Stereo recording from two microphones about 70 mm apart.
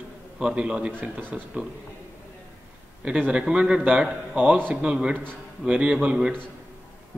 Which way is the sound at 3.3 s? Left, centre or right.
Centre.